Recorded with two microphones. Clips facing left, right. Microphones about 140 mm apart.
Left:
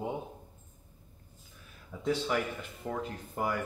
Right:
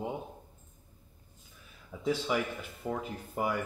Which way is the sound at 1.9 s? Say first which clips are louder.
Even; 5° right (ahead or behind).